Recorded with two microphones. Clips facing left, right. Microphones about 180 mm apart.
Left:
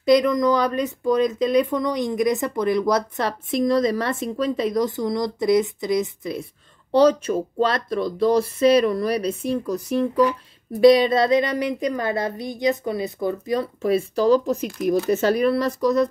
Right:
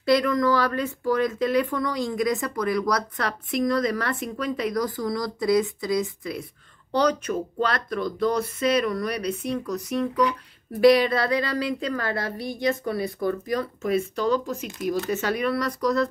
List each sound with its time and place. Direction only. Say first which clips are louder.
0.0 s speech: left 4 dB; 15° left (ahead or behind)